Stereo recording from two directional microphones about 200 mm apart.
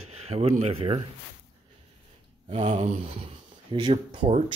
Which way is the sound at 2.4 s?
30° right (ahead or behind).